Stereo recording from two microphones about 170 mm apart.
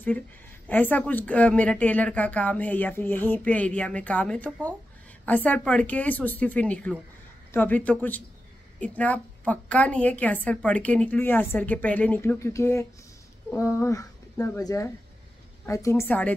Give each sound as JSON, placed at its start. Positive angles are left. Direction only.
{"t": 0.7, "sound": "a woman's voice", "side_deg": 10}